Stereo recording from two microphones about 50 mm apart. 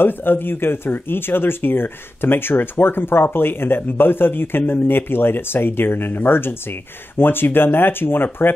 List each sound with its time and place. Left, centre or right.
0.0 s speech: left